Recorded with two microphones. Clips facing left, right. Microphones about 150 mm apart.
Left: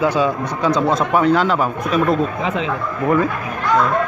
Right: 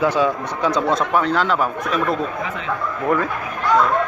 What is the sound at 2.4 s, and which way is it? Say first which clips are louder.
Speech: left 6 dB; 90° left.